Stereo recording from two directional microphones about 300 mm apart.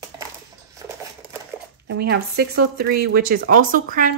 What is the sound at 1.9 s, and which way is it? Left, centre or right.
Speech, right.